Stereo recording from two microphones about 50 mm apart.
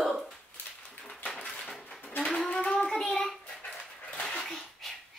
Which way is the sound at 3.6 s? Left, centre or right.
Left.